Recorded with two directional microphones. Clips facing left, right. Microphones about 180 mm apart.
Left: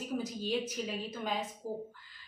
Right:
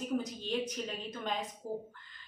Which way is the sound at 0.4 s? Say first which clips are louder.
Left 1 dB; 5° left (ahead or behind).